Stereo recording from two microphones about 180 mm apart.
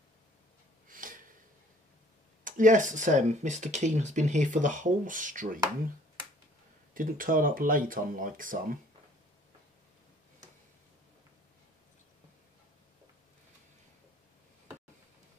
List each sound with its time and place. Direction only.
0.8 s a sound: 50° right (ahead or behind)
2.4 s speech: 45° right (ahead or behind)
6.9 s speech: 50° right (ahead or behind)